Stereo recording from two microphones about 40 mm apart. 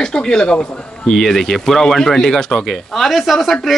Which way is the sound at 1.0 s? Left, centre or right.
Centre.